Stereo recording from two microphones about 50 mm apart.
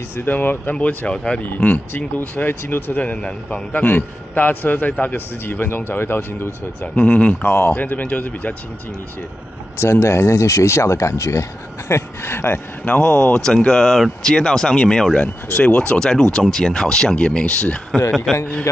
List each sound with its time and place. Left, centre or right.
0.2 s a man's voice: left
0.7 s a man's voice: left
1.4 s a man's voice: left
3.0 s a man's voice: left
3.8 s a man's voice: left
7.0 s a man's voice: left
7.4 s speech: left
7.7 s a man's voice: left
9.8 s speech: left
11.9 s speech: left
13.0 s speech: centre
18.3 s a man's voice: centre